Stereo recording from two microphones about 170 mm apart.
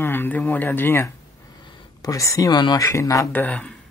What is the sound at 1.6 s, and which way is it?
Speech, 25° left (ahead or behind).